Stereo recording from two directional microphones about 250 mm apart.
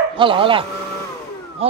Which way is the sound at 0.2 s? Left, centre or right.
Right.